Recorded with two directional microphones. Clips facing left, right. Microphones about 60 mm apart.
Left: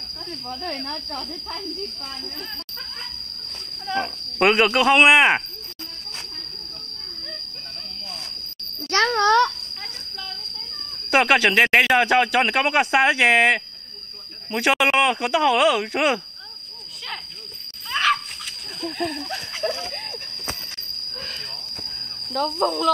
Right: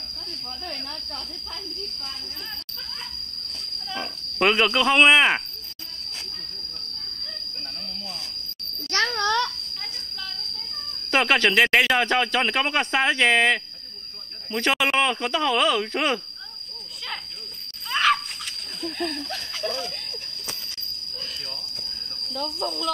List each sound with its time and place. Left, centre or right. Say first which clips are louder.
0.7 s speech: left 5 dB; left
3.9 s speech: left 8 dB; left
8.9 s wail: left 6 dB; left
11.1 s speech: left 3 dB; centre
11.5 s speech: left 2 dB; centre
14.8 s speech: left 3 dB; centre
17.9 s splash: even; centre
18.8 s speech: left 2 dB; centre
19.2 s speech: left 4 dB; left
21.1 s train wheels squealing: left 3 dB; left
22.3 s speech: left 8 dB; left